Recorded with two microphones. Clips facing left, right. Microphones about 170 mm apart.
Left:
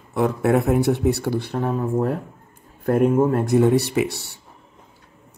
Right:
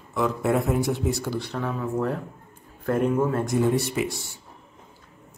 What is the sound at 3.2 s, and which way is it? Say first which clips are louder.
Speech: left 6 dB; 55° left (ahead or behind).